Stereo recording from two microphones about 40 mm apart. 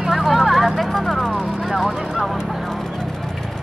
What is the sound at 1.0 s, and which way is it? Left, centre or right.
Vehicle, centre.